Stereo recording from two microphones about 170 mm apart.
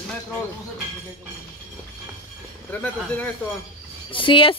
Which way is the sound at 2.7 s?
10° left (ahead or behind).